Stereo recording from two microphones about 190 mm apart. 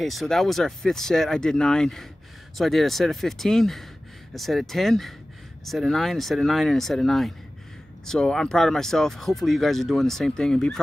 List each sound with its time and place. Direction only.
0.0 s speech: centre (ahead or behind)